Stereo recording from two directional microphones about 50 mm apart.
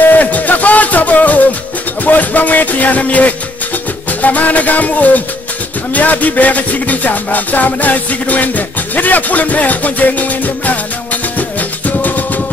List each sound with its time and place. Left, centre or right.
0.1 s music: left
2.0 s a sound: left
4.2 s music: left